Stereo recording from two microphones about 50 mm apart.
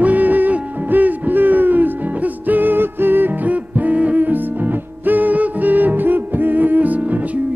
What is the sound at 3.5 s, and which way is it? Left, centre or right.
Music, right.